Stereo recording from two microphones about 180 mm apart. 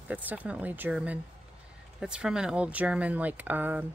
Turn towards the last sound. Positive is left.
turn(degrees=-10)  # may be behind; listen again after turning